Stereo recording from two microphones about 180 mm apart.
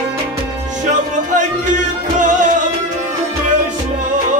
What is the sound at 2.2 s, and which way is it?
Music, 45° right (ahead or behind).